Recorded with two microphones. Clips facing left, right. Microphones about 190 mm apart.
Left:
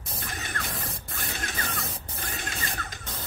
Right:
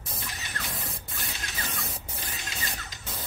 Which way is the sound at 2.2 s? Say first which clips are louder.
Left 5 dB; 55° left (ahead or behind).